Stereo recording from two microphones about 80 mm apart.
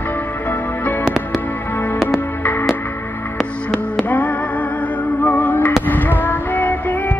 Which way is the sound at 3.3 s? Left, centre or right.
Centre.